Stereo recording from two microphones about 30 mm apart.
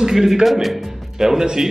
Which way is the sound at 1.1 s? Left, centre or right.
Centre.